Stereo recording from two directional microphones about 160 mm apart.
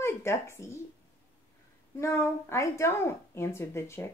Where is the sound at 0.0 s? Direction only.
15° left (ahead or behind).